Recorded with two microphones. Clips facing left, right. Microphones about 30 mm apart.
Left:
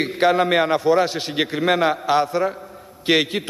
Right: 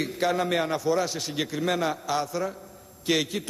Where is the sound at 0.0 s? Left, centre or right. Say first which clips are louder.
Left 8 dB; left.